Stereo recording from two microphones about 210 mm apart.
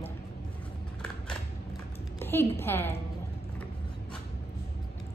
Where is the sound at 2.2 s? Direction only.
10° left (ahead or behind).